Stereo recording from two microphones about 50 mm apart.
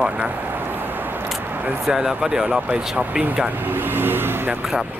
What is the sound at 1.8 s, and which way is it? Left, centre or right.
Speech, centre.